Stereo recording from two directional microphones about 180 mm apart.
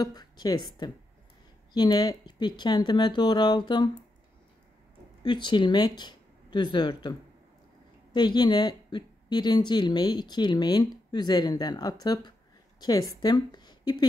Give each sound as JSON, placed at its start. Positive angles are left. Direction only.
{"t": 0.0, "sound": "speech", "side_deg": 20}
{"t": 5.2, "sound": "a woman's voice", "side_deg": 25}